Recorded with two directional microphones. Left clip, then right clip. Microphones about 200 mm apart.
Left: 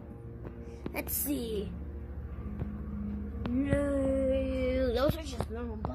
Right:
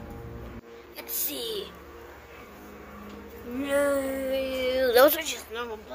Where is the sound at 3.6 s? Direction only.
5° left (ahead or behind).